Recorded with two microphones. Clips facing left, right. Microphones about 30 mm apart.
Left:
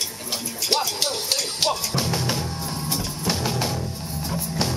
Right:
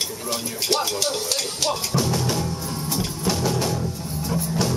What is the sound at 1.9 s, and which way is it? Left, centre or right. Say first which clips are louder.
Music: right 2 dB; left.